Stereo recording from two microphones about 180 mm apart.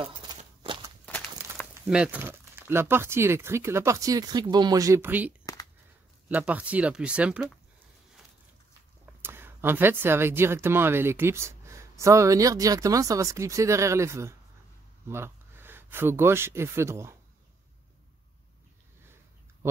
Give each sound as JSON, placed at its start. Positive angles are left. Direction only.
{"t": 0.6, "sound": "walk", "side_deg": -20}
{"t": 1.9, "sound": "speech", "side_deg": -5}
{"t": 5.4, "sound": "a sound", "side_deg": 20}
{"t": 6.2, "sound": "speech", "side_deg": -10}
{"t": 9.2, "sound": "speech", "side_deg": -10}